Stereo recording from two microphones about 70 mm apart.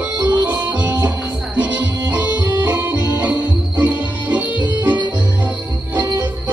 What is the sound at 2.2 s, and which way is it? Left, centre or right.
Music, right.